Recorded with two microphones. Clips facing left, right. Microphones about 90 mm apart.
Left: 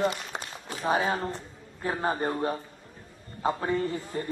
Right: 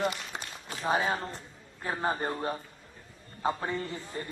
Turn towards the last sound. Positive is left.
turn(degrees=25)  # may be behind; listen again after turning